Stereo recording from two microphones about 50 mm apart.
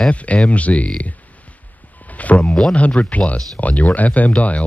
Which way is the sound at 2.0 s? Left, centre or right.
Left.